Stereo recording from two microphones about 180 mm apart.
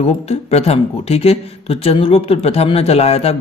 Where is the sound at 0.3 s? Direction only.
35° left (ahead or behind).